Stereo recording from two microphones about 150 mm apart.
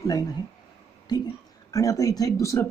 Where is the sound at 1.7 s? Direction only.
20° left (ahead or behind).